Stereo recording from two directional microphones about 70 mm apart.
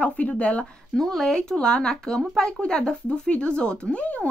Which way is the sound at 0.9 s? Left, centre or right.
Centre.